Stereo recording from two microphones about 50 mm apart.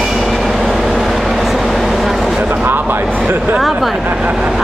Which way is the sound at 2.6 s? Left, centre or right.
Right.